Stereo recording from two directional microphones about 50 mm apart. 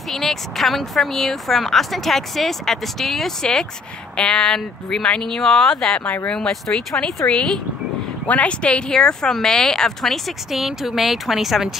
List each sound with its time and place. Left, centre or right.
0.1 s a woman's voice: centre
6.2 s speech: centre
7.2 s speech: left
8.3 s speech: left; by 11.7 s centre